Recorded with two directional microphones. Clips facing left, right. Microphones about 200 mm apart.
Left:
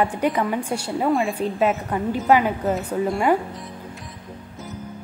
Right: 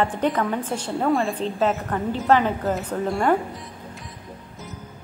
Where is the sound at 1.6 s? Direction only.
15° left (ahead or behind).